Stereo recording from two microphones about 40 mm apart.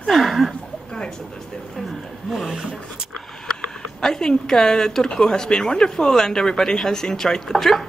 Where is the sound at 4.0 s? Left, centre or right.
Centre.